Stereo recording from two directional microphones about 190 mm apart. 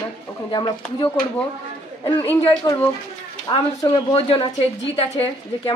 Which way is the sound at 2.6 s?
20° left (ahead or behind).